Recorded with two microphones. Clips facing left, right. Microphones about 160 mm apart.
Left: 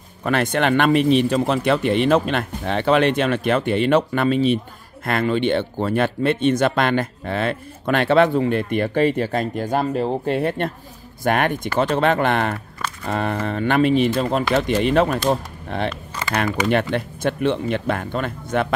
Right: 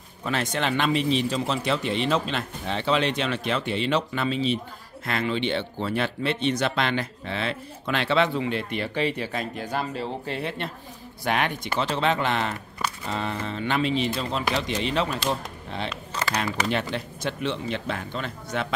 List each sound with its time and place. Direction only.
0.2 s speech: 55° left (ahead or behind)